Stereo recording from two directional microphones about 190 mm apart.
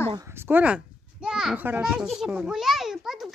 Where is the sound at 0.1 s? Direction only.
15° right (ahead or behind).